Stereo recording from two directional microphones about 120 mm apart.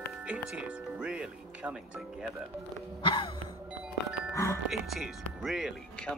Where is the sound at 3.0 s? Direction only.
45° left (ahead or behind).